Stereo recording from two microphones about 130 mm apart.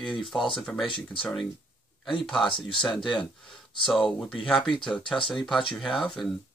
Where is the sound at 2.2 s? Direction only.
5° left (ahead or behind).